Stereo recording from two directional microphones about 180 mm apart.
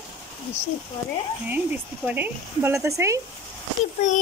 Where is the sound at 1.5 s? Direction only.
10° right (ahead or behind).